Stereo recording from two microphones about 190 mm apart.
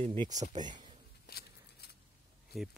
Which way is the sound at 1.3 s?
50° left (ahead or behind).